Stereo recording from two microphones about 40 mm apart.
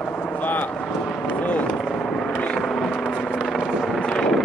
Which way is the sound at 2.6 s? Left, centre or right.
Centre.